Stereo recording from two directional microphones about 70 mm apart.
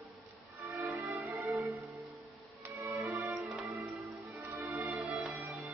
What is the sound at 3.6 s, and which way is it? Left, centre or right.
Music, right.